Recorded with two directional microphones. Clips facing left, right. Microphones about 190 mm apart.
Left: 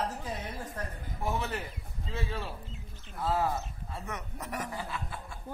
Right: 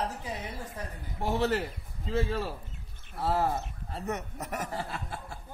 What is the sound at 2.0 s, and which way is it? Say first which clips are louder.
Speech: right 7 dB; 45° right (ahead or behind).